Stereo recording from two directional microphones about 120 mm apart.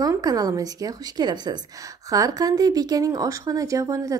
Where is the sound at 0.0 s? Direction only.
30° right (ahead or behind).